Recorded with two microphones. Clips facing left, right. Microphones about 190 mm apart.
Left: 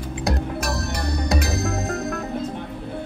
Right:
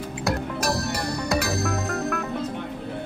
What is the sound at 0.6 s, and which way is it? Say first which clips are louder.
Music: right 1 dB; 35° right (ahead or behind).